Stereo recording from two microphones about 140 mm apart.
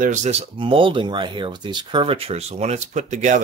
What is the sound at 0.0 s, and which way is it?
Speech, 60° right (ahead or behind).